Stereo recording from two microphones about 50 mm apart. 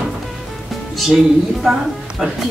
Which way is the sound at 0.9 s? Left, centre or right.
Centre.